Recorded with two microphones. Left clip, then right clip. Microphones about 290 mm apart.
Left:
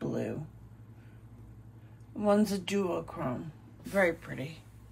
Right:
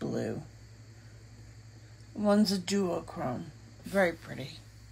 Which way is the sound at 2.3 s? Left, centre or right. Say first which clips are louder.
Even; centre.